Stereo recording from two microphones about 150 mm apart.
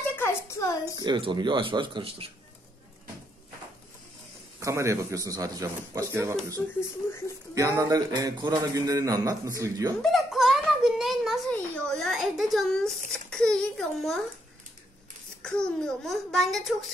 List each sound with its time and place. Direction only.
0.1 s a sound: 15° left (ahead or behind)
0.9 s speech: 30° right (ahead or behind)
4.6 s a man's voice: 20° right (ahead or behind)
7.5 s a man's voice: 20° right (ahead or behind)
10.0 s a sound: centre (ahead or behind)
13.1 s a child's voice: 5° left (ahead or behind)
15.4 s a child's voice: 5° left (ahead or behind)